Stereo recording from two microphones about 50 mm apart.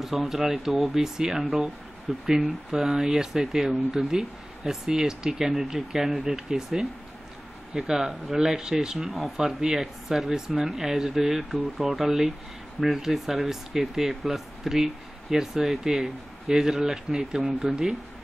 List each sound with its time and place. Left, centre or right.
0.0 s speech: centre